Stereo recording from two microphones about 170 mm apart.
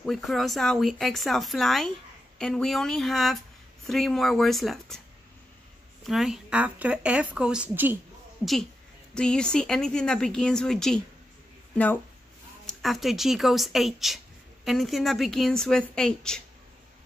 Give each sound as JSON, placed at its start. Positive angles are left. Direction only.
{"t": 0.0, "sound": "speech", "side_deg": 0}
{"t": 6.0, "sound": "speech", "side_deg": 0}
{"t": 9.1, "sound": "speech", "side_deg": 5}